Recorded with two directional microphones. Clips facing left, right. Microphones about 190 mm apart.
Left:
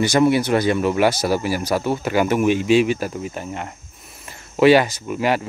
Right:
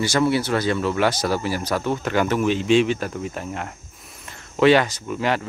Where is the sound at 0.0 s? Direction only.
15° left (ahead or behind).